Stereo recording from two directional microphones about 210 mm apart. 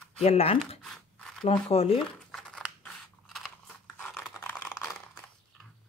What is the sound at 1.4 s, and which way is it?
Speech, 25° left (ahead or behind).